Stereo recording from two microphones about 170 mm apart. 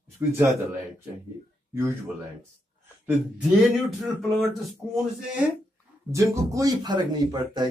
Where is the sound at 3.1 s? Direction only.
Centre (ahead or behind).